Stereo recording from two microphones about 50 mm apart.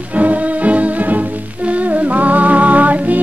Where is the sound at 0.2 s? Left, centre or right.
Right.